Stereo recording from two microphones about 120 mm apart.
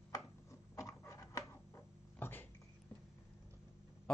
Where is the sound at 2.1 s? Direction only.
15° left (ahead or behind).